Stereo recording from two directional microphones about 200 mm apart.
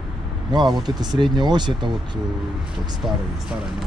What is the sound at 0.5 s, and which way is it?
Speech, 20° right (ahead or behind).